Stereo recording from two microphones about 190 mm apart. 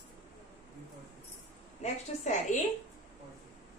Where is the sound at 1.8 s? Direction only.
40° left (ahead or behind).